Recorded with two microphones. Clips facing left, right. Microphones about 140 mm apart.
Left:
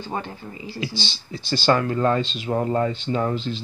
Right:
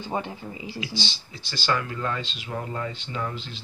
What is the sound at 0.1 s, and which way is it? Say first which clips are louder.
Speech: right 1 dB; 10° right (ahead or behind).